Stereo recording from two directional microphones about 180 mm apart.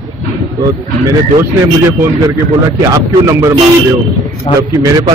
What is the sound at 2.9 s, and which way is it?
Speech, 15° right (ahead or behind).